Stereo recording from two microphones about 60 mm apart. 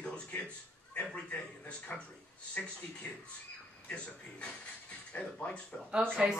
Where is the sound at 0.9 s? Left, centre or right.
Left.